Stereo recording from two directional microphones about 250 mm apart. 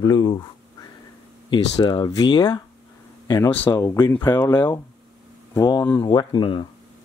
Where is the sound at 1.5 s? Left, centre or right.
Centre.